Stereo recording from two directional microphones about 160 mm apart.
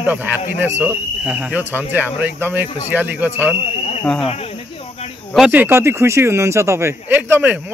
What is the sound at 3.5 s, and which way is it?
Cricket, 45° left (ahead or behind).